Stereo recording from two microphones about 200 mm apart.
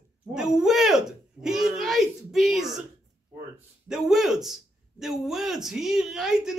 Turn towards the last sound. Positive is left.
turn(degrees=-5)  # may be behind; listen again after turning